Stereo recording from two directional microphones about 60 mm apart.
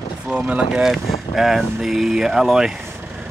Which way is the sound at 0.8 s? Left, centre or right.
Centre.